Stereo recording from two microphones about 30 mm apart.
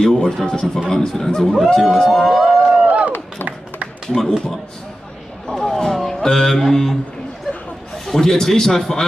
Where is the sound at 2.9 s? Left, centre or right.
Right.